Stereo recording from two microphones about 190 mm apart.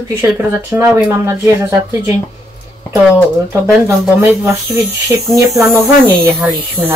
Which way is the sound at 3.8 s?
10° right (ahead or behind).